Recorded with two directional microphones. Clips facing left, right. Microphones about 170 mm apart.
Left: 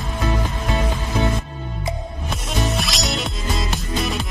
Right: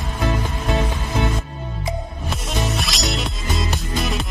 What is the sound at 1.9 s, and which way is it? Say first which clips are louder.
Music: right 1 dB; centre (ahead or behind).